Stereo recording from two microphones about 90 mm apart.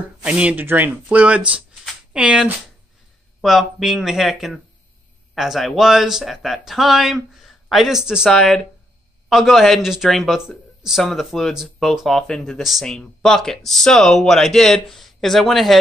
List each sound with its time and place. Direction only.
0.2 s speech: 15° right (ahead or behind)
8.3 s speech: 5° left (ahead or behind)